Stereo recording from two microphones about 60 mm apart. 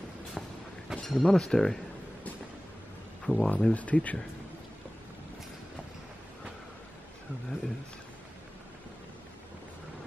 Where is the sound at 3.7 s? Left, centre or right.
Left.